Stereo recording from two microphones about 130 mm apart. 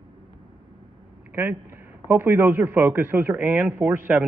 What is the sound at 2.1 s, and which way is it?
A man's voice, 15° right (ahead or behind).